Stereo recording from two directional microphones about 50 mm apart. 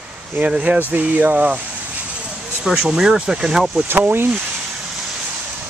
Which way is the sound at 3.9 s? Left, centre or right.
Right.